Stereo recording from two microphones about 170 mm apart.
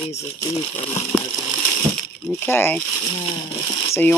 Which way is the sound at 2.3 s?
10° left (ahead or behind).